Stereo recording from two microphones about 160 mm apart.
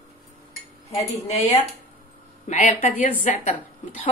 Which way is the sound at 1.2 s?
45° left (ahead or behind).